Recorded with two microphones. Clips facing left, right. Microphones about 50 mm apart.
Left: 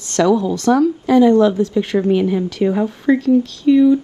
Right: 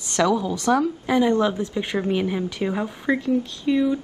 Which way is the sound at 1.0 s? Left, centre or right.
Right.